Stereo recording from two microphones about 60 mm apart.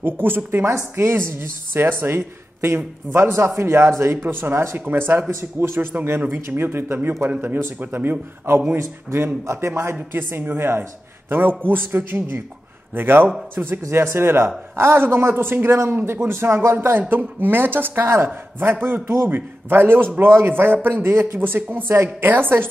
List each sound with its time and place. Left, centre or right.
0.0 s a man's voice: right
8.7 s speech: right
10.1 s a man's voice: right
21.4 s a man's voice: right